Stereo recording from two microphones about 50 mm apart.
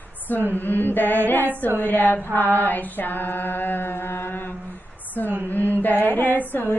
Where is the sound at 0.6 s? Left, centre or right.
Left.